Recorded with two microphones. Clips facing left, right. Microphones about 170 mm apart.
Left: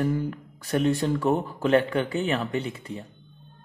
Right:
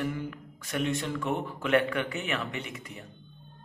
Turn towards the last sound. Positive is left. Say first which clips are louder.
# left 9 dB
turn(degrees=30)  # may be behind; listen again after turning